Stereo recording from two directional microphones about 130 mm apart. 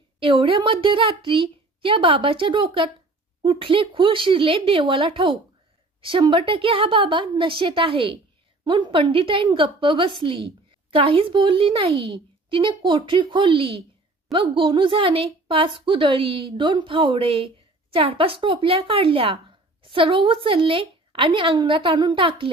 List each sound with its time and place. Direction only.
0.2 s a woman's voice: 45° right (ahead or behind)